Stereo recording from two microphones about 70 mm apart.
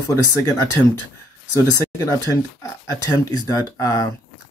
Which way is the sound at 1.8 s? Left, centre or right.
Left.